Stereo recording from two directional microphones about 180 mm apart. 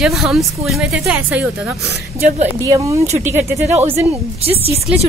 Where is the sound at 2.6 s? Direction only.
20° right (ahead or behind).